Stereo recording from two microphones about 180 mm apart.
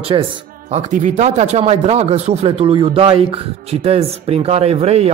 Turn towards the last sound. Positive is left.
turn(degrees=-35)  # may be behind; listen again after turning